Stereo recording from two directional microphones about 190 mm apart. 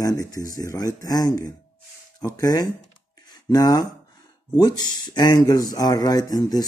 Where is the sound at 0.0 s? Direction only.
20° left (ahead or behind).